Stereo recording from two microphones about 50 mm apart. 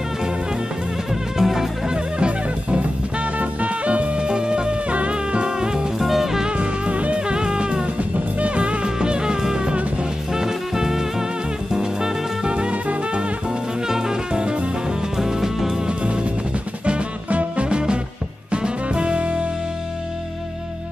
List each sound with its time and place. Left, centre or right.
1.4 s music: centre
2.0 s music: centre
5.9 s music: centre
6.5 s music: right
15.9 s music: centre